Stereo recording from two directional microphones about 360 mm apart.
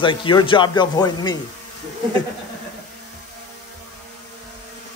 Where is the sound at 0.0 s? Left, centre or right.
Centre.